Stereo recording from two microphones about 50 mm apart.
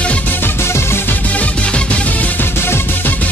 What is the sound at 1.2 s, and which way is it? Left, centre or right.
Music, left.